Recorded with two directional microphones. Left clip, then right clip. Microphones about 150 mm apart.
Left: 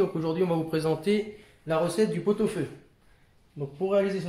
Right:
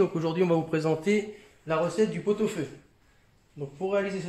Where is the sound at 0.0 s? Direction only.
65° right (ahead or behind).